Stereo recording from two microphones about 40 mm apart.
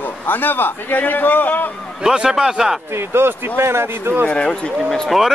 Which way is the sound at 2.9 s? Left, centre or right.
Right.